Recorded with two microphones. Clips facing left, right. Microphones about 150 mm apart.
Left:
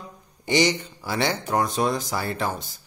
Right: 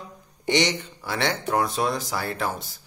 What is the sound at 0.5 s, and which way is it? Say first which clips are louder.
A man's voice: left 2 dB; centre (ahead or behind).